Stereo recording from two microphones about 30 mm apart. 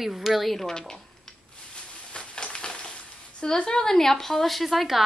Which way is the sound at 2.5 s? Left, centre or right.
Left.